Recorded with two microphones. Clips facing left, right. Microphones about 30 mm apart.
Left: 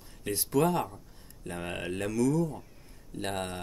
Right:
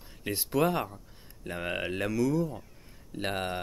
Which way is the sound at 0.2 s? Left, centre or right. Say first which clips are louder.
Even; centre.